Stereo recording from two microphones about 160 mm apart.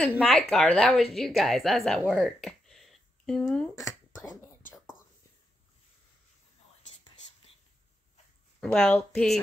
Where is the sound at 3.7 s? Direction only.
20° left (ahead or behind).